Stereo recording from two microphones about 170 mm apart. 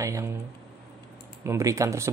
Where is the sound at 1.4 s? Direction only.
15° right (ahead or behind).